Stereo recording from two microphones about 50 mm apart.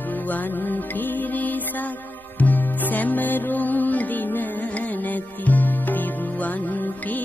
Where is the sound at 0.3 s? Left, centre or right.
Left.